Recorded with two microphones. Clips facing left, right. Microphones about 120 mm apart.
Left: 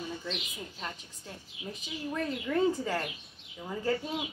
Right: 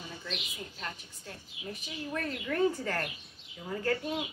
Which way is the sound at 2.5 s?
15° left (ahead or behind).